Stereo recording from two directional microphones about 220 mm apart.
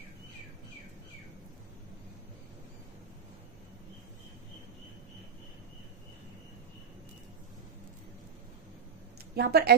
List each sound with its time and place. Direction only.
9.3 s speech: 45° right (ahead or behind)